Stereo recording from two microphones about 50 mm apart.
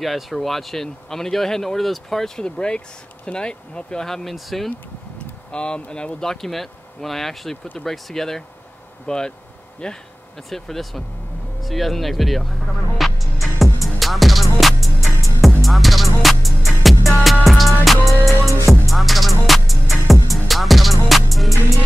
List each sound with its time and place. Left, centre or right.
0.0 s speech: centre
5.5 s speech: centre
9.8 s insect: centre
10.5 s speech: centre
11.6 s music: centre